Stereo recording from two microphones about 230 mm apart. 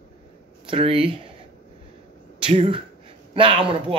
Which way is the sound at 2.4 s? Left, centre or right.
Right.